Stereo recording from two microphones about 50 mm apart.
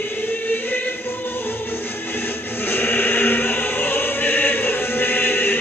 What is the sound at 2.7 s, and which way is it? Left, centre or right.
Music, left.